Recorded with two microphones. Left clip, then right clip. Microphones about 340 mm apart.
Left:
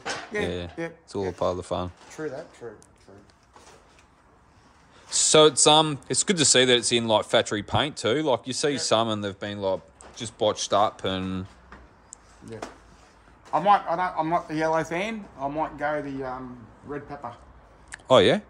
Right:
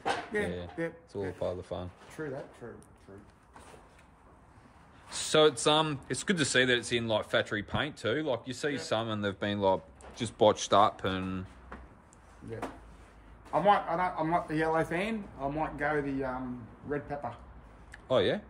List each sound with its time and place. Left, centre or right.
0.3 s a man's voice: left
5.1 s speech: centre
9.3 s speech: centre
13.5 s a man's voice: left
17.9 s a sound: left